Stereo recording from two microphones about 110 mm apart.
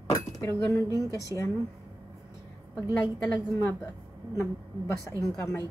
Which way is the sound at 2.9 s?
35° left (ahead or behind).